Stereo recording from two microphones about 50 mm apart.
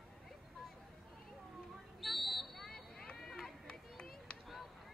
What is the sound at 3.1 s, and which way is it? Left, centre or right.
Run, centre.